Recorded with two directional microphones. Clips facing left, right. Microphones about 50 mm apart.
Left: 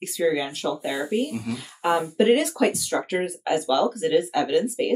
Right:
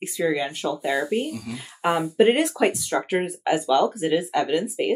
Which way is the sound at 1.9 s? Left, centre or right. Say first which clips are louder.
Right 1 dB; centre.